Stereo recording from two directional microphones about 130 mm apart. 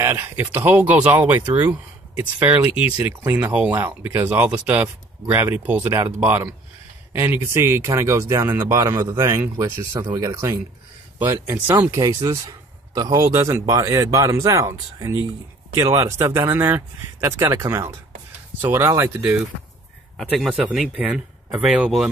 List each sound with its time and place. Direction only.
0.0 s speech: 20° right (ahead or behind)
11.9 s speech: 25° right (ahead or behind)
20.2 s speech: centre (ahead or behind)